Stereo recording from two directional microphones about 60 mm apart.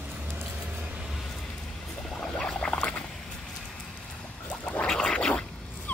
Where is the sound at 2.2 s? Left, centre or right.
Centre.